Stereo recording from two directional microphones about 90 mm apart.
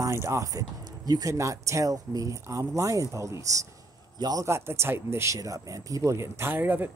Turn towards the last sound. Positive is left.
turn(degrees=-20)  # may be behind; listen again after turning